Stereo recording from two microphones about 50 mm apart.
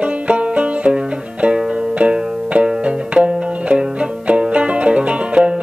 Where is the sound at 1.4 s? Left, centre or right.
Right.